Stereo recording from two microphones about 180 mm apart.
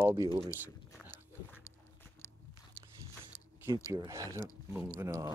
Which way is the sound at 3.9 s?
15° right (ahead or behind).